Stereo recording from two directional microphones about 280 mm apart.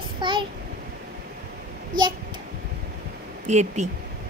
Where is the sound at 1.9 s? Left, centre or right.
Right.